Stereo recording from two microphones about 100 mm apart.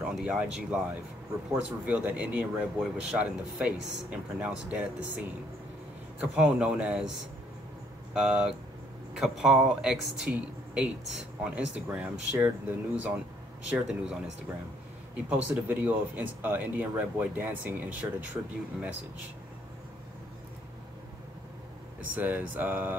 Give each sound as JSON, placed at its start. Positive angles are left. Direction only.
{"t": 0.0, "sound": "speech", "side_deg": -5}
{"t": 6.3, "sound": "speech", "side_deg": -10}
{"t": 8.1, "sound": "speech", "side_deg": -5}
{"t": 15.2, "sound": "speech", "side_deg": -15}
{"t": 22.1, "sound": "speech", "side_deg": -15}